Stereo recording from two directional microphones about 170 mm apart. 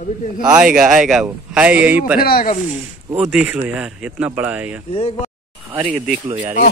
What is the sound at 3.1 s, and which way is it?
Speech, 5° right (ahead or behind).